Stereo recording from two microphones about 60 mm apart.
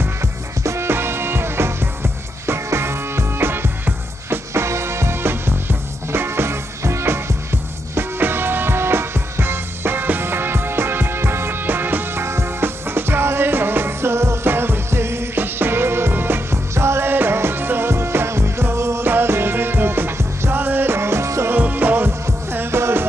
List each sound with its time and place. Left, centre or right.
0.0 s music: right
21.5 s music: right